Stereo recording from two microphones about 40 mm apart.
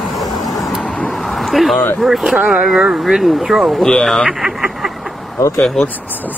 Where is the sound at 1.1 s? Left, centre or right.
Centre.